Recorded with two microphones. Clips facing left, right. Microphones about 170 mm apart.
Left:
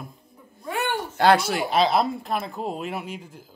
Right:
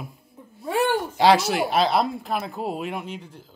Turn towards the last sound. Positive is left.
turn(degrees=10)  # may be behind; listen again after turning